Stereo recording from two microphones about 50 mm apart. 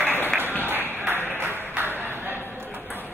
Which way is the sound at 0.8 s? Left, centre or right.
Right.